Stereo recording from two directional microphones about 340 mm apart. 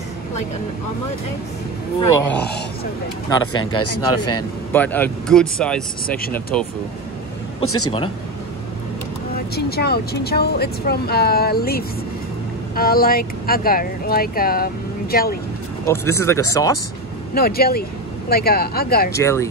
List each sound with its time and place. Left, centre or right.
2.4 s speech: left
3.3 s speech: centre
3.7 s speech: left
4.7 s speech: centre
6.0 s speech: left
6.5 s speech: centre
7.6 s speech: left
9.6 s speech: left
15.8 s speech: centre
17.3 s speech: left
19.1 s speech: centre